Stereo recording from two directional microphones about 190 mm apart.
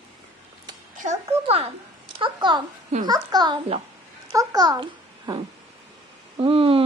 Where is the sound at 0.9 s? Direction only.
40° right (ahead or behind).